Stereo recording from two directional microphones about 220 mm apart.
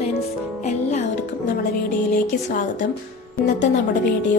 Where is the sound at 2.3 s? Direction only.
35° left (ahead or behind).